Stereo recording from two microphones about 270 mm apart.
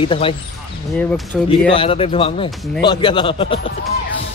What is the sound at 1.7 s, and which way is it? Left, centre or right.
Speech, centre.